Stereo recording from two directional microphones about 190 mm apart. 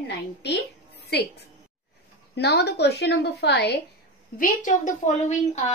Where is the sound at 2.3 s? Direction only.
60° left (ahead or behind).